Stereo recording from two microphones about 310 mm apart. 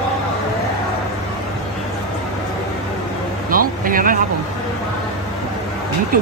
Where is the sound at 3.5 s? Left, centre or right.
Right.